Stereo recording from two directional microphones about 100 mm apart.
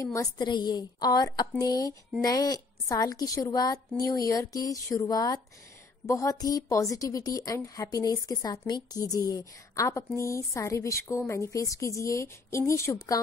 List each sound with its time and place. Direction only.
0.0 s a woman's voice: 35° left (ahead or behind)
0.4 s a woman's voice: 45° left (ahead or behind)